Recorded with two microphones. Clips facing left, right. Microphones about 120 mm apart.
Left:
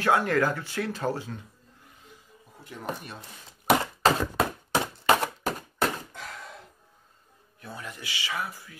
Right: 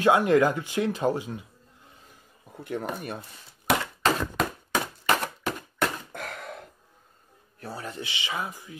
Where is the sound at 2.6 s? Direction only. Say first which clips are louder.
Right 5 dB; 55° right (ahead or behind).